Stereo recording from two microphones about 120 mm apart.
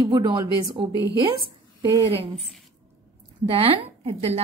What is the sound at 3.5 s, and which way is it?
Speech, 50° right (ahead or behind).